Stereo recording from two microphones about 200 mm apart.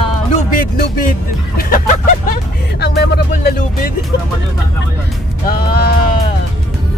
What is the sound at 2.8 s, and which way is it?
Speech, 55° left (ahead or behind).